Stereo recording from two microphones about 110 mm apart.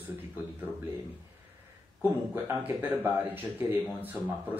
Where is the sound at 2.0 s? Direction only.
20° right (ahead or behind).